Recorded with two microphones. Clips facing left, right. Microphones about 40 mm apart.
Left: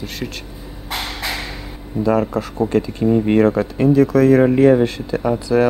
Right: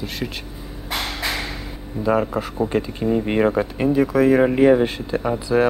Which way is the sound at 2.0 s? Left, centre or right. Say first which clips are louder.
Left 2 dB; centre.